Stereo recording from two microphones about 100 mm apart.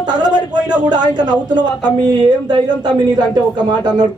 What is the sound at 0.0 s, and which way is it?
Speech, 45° right (ahead or behind).